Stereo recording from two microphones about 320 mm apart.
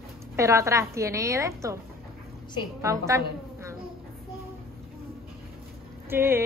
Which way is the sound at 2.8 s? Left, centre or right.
Centre.